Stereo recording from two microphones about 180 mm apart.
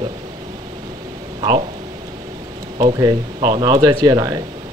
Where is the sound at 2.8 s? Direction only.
20° right (ahead or behind).